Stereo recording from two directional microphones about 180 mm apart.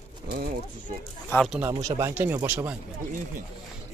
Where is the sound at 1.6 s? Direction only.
20° right (ahead or behind).